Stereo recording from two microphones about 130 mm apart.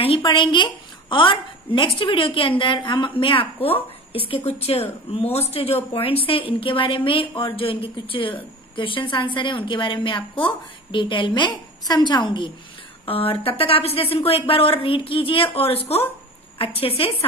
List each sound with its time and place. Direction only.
0.0 s a woman's voice: 45° left (ahead or behind)